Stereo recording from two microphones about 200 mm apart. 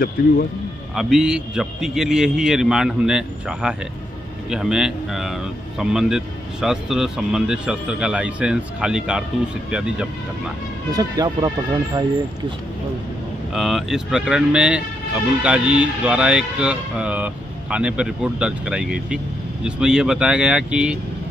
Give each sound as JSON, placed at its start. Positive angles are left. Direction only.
{"t": 0.2, "sound": "speech", "side_deg": 45}
{"t": 0.9, "sound": "speech", "side_deg": -5}
{"t": 10.9, "sound": "speech", "side_deg": -20}
{"t": 13.5, "sound": "speech", "side_deg": 0}